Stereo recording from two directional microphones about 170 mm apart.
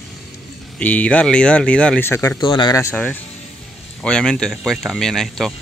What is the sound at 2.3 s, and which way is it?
Speech, 25° left (ahead or behind).